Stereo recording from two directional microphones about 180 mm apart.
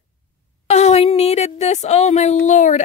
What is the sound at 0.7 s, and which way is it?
Speech, 35° left (ahead or behind).